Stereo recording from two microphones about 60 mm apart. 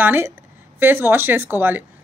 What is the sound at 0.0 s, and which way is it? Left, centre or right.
Speech, right.